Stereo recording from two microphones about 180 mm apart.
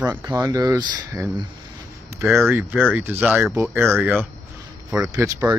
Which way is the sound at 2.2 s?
Centre (ahead or behind).